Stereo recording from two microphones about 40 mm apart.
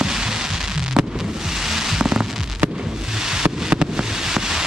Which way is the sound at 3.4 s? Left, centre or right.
Right.